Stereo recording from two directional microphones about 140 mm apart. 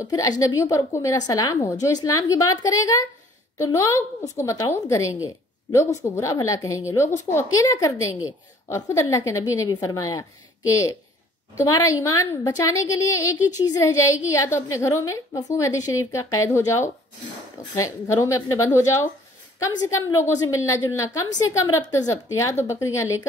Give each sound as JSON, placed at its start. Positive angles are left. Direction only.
{"t": 0.0, "sound": "a woman's voice", "side_deg": 25}
{"t": 11.5, "sound": "a woman's voice", "side_deg": 20}
{"t": 20.0, "sound": "a woman's voice", "side_deg": 25}